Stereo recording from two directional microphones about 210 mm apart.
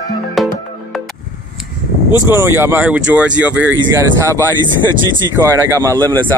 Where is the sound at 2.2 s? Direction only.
10° right (ahead or behind).